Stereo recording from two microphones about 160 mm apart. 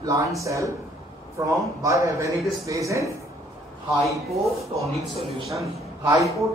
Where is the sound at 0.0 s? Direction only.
20° right (ahead or behind).